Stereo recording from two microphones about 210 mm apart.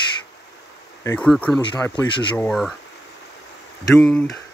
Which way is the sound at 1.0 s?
5° left (ahead or behind).